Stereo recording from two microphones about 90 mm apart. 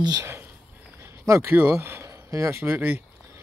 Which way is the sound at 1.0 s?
30° right (ahead or behind).